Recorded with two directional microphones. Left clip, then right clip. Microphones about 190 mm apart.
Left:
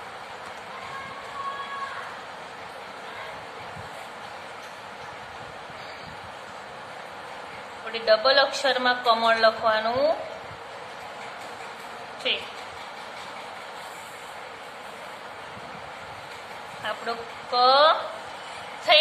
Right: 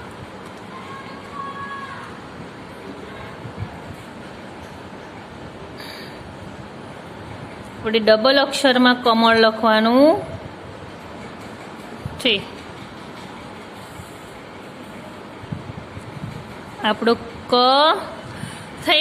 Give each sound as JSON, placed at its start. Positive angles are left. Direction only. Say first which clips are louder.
{"t": 7.8, "sound": "a woman's voice", "louder": "right 6 dB", "side_deg": -50}
{"t": 12.2, "sound": "speech", "louder": "right 8 dB", "side_deg": -55}
{"t": 16.8, "sound": "a woman's voice", "louder": "right 12 dB", "side_deg": -60}
{"t": 18.9, "sound": "a woman's voice", "louder": "right 1 dB", "side_deg": -45}